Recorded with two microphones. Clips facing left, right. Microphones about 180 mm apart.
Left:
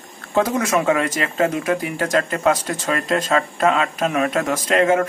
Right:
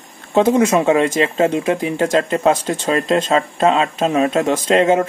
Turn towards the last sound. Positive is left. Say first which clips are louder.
# right 3 dB
turn(degrees=-25)  # may be behind; listen again after turning